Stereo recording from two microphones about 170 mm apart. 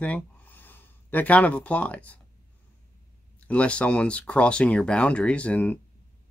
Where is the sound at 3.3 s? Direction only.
10° left (ahead or behind).